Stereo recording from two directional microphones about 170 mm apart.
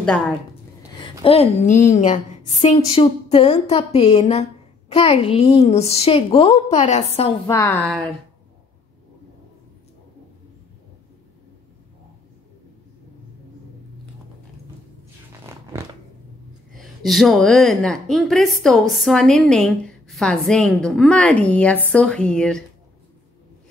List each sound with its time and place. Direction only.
1.2 s a woman's voice: 35° left (ahead or behind)
6.7 s a woman's voice: 45° left (ahead or behind)
7.4 s a woman's voice: 20° left (ahead or behind)
7.8 s a woman's voice: centre (ahead or behind)
15.5 s a sound: 15° right (ahead or behind)
16.7 s a woman's voice: centre (ahead or behind)